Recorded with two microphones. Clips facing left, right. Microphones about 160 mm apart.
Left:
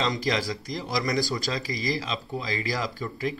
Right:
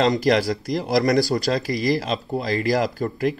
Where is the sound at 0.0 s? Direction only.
60° right (ahead or behind).